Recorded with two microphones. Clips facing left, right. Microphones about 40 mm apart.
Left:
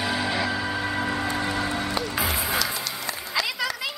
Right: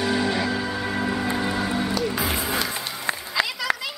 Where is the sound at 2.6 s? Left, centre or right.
Right.